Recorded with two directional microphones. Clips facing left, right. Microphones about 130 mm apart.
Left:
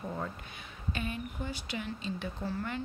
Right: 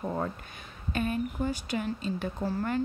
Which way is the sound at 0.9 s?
45° right (ahead or behind).